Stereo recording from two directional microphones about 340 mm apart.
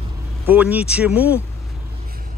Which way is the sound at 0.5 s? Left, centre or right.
Centre.